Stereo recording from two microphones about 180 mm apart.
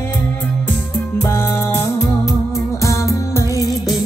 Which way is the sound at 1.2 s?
15° left (ahead or behind).